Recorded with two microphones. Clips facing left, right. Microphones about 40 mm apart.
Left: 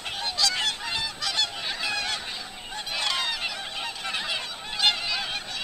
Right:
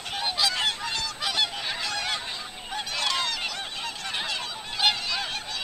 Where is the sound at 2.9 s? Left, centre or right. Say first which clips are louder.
Even; centre.